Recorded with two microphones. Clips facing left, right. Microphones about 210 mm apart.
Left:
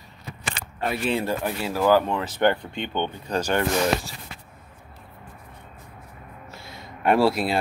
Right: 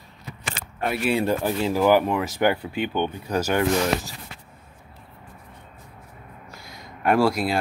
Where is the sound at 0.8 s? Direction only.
5° right (ahead or behind).